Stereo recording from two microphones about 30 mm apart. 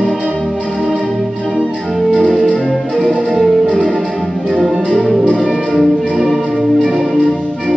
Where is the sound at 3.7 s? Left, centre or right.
Centre.